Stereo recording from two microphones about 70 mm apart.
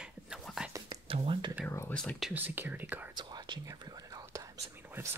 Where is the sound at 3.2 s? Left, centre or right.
Right.